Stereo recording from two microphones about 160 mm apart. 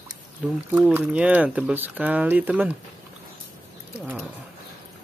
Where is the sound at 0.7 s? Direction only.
10° right (ahead or behind).